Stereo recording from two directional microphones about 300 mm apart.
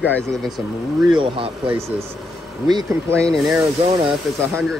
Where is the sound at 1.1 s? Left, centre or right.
Centre.